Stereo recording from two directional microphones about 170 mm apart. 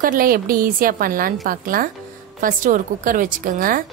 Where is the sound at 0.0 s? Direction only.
55° right (ahead or behind).